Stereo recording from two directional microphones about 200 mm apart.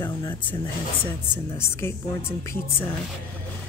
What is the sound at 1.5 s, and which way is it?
Speech, 10° left (ahead or behind).